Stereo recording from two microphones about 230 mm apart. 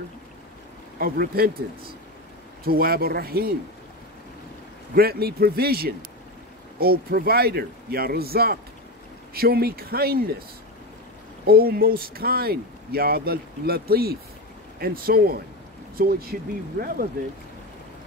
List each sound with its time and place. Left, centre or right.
0.9 s speech: right
4.9 s speech: right
11.4 s speech: right